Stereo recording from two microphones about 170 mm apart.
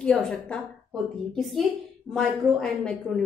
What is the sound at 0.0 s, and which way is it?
A woman's voice, 5° left (ahead or behind).